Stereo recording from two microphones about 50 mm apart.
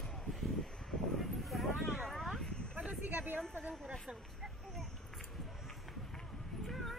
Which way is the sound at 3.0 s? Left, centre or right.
Right.